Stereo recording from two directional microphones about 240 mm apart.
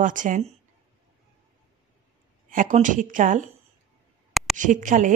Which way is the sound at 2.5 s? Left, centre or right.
Right.